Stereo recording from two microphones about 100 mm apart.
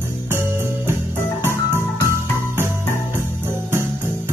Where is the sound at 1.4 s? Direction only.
25° right (ahead or behind).